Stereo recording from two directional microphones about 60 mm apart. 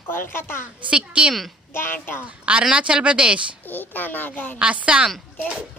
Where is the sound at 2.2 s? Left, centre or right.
Centre.